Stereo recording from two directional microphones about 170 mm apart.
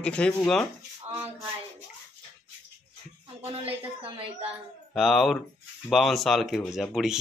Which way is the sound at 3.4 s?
35° right (ahead or behind).